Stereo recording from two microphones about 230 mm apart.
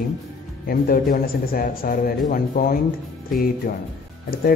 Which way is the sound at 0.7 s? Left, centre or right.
Left.